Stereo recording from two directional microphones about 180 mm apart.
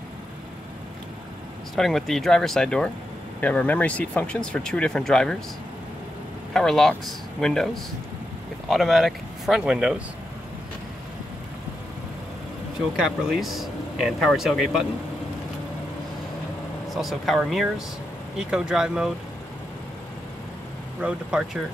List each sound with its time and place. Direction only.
1.8 s speech: centre (ahead or behind)
6.5 s speech: centre (ahead or behind)
13.0 s speech: centre (ahead or behind)
16.9 s speech: centre (ahead or behind)
21.0 s speech: 5° right (ahead or behind)